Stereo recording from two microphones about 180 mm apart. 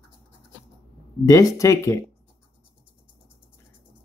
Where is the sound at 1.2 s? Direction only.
20° left (ahead or behind).